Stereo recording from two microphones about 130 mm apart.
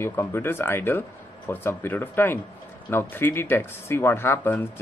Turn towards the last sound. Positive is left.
turn(degrees=15)  # may be behind; listen again after turning